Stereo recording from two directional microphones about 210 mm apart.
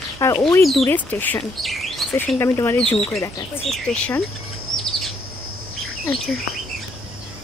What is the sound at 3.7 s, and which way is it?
Speech, 5° left (ahead or behind).